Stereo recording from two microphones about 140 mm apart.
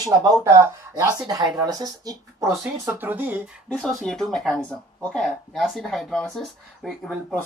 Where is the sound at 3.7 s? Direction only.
5° left (ahead or behind).